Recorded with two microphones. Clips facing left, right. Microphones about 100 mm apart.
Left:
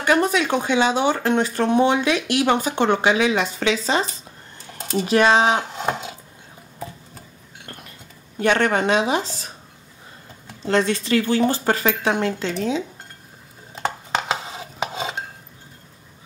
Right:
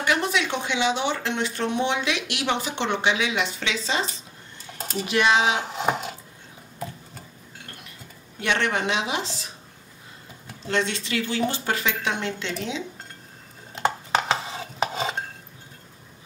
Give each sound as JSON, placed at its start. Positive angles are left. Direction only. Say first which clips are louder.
{"t": 0.0, "sound": "speech", "louder": "left 5 dB", "side_deg": 45}
{"t": 5.0, "sound": "speech", "louder": "left 4 dB", "side_deg": 35}
{"t": 5.7, "sound": "a sound", "louder": "even", "side_deg": -5}
{"t": 8.4, "sound": "speech", "louder": "left 6 dB", "side_deg": 45}
{"t": 10.7, "sound": "speech", "louder": "left 7 dB", "side_deg": 40}
{"t": 13.7, "sound": "stir", "louder": "right 1 dB", "side_deg": 0}